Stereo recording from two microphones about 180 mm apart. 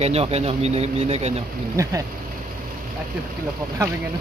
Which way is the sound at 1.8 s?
20° right (ahead or behind).